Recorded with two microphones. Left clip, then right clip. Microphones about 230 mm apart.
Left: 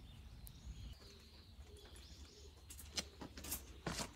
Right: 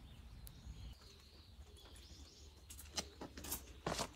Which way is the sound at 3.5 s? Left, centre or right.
Centre.